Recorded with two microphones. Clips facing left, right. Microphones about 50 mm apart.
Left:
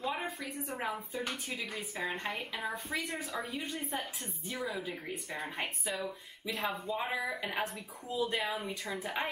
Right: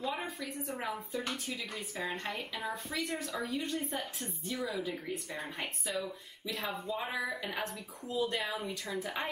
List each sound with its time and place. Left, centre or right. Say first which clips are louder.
0.0 s a sound: left 1 dB; centre
0.7 s a woman's voice: left 1 dB; centre
4.5 s a woman's voice: right 1 dB; centre
6.5 s a woman's voice: left 2 dB; centre
7.7 s a woman's voice: right 1 dB; centre